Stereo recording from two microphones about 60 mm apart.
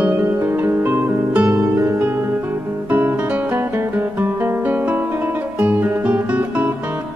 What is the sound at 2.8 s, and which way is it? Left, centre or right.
Guitar, right.